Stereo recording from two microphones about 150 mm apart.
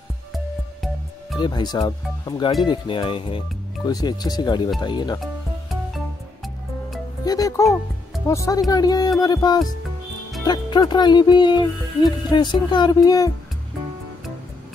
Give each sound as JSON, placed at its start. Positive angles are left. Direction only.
{"t": 1.4, "sound": "speech", "side_deg": 30}
{"t": 7.2, "sound": "speech", "side_deg": 20}